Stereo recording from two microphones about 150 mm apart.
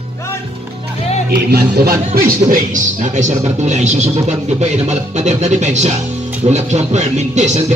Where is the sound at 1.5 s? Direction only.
85° right.